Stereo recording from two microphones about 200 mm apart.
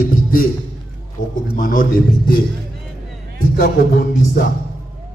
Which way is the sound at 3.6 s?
45° left (ahead or behind).